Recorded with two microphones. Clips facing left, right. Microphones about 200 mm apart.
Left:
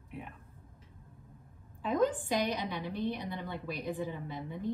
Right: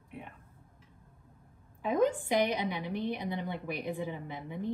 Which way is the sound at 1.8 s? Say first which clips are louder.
Right 1 dB; 15° right (ahead or behind).